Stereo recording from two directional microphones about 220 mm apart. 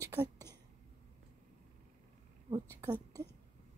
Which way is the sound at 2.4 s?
15° right (ahead or behind).